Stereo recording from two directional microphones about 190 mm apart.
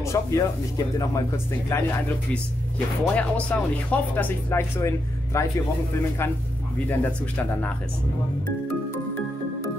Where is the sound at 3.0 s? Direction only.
5° left (ahead or behind).